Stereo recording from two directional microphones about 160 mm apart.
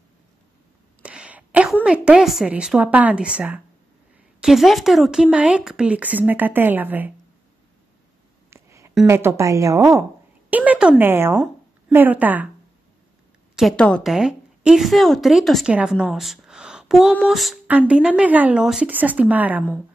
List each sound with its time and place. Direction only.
1.0 s a sound: 5° right (ahead or behind)
1.9 s speech: 5° right (ahead or behind)
8.5 s a sound: 15° right (ahead or behind)
9.0 s a woman's voice: 15° right (ahead or behind)
10.5 s speech: 10° right (ahead or behind)
13.6 s a woman's voice: 5° left (ahead or behind)